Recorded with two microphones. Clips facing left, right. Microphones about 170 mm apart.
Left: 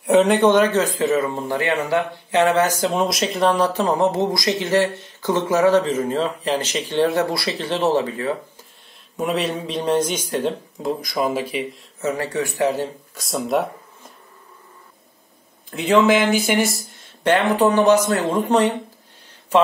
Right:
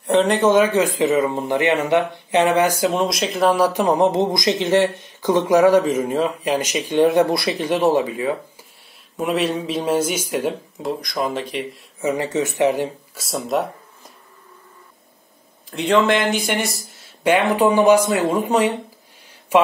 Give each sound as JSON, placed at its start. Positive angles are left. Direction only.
{"t": 0.0, "sound": "speech", "side_deg": 0}
{"t": 2.9, "sound": "speech", "side_deg": 0}
{"t": 9.1, "sound": "speech", "side_deg": 0}
{"t": 12.0, "sound": "speech", "side_deg": -15}
{"t": 13.1, "sound": "speech", "side_deg": 0}
{"t": 15.7, "sound": "speech", "side_deg": 0}
{"t": 17.2, "sound": "speech", "side_deg": -10}